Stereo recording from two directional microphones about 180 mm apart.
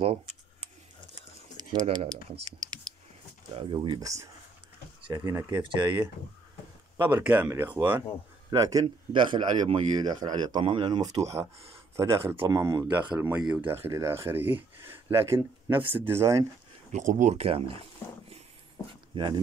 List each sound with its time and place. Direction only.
0.0 s a sound: 30° right (ahead or behind)
1.6 s speech: 25° right (ahead or behind)
7.0 s speech: 10° right (ahead or behind)
13.2 s speech: 5° right (ahead or behind)
16.9 s speech: 40° right (ahead or behind)
19.1 s speech: 25° right (ahead or behind)